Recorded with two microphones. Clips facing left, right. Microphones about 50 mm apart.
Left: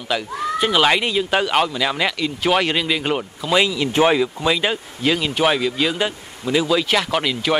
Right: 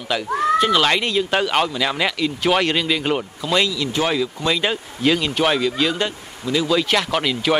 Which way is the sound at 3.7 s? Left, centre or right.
Left.